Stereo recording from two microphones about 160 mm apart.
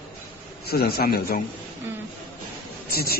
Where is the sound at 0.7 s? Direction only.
70° left (ahead or behind).